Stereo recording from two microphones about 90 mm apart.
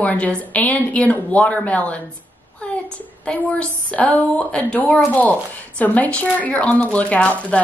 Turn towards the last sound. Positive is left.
turn(degrees=15)  # may be behind; listen again after turning